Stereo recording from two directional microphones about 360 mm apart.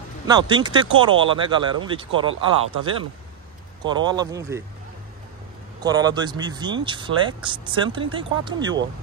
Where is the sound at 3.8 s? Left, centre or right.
Centre.